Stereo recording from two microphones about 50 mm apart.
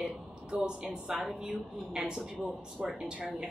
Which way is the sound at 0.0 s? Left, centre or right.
Centre.